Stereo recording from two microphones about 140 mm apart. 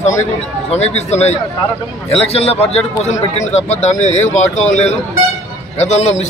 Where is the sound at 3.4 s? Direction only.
55° left (ahead or behind).